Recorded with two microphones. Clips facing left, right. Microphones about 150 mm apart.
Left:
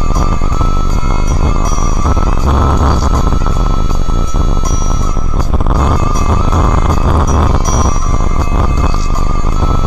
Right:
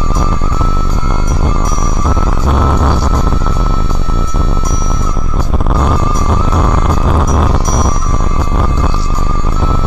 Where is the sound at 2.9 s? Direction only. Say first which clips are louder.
Even; 10° left (ahead or behind).